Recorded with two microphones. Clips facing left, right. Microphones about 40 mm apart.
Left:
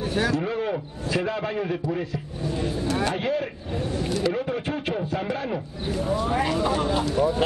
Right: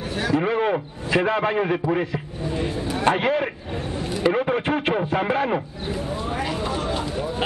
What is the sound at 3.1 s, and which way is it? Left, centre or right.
A man's voice, right.